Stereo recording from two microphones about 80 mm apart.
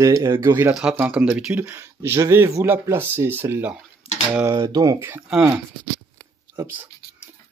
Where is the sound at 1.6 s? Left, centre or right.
Right.